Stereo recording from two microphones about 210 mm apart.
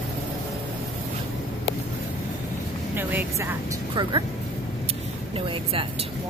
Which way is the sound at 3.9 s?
20° right (ahead or behind).